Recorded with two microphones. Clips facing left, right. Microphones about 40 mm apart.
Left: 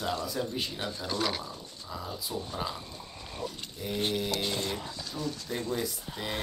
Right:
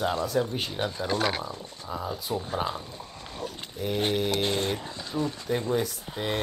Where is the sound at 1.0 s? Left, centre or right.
Right.